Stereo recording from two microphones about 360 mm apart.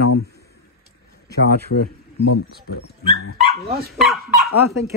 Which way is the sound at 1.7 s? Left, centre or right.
Left.